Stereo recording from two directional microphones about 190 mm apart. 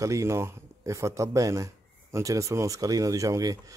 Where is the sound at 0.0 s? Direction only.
15° right (ahead or behind).